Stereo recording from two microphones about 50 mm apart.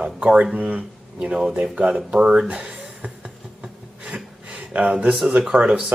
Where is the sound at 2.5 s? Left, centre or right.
Right.